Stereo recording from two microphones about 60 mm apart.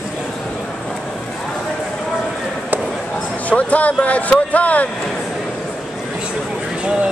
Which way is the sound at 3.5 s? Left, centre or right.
Left.